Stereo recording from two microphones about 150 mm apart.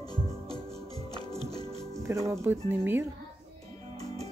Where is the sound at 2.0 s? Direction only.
20° right (ahead or behind).